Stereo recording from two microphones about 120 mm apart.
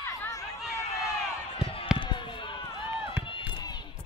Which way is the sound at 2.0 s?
40° left (ahead or behind).